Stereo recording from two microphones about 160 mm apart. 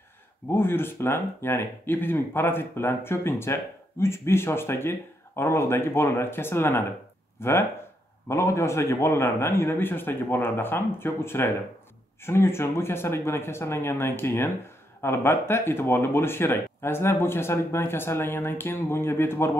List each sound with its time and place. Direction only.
0.5 s speech: 15° left (ahead or behind)